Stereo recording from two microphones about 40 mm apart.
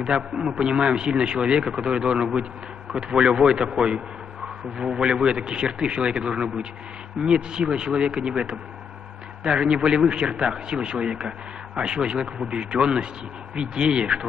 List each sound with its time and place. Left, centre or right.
0.0 s a man's voice: right